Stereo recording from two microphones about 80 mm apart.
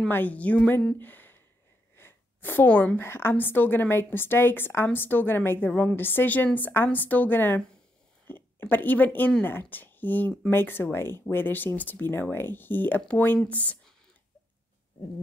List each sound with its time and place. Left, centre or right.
0.1 s speech: left
0.9 s a sound: left
2.0 s a woman's voice: left